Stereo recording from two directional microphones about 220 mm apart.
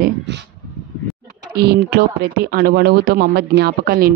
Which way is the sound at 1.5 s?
45° right (ahead or behind).